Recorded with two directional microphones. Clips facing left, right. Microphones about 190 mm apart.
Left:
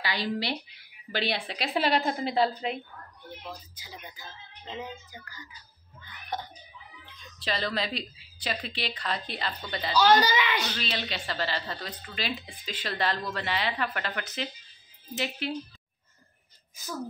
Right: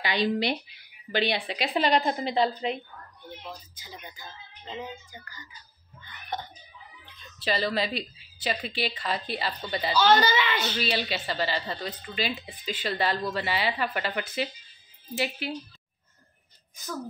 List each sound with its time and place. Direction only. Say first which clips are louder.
0.0 s speech: right 5 dB; 20° right (ahead or behind)
1.1 s speech: right 3 dB; centre (ahead or behind)
7.3 s speech: right 3 dB; 5° right (ahead or behind)
9.9 s speech: even; 10° left (ahead or behind)
10.6 s speech: right 4 dB; 10° right (ahead or behind)